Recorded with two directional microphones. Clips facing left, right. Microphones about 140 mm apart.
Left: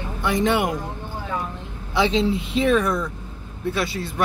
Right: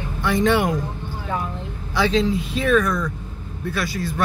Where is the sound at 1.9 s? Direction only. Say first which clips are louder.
Even; 25° left (ahead or behind).